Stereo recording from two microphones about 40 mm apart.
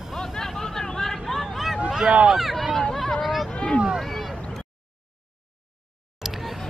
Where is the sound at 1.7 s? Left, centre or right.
Right.